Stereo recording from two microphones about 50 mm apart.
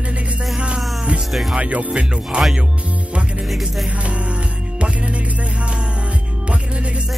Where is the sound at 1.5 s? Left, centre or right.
Right.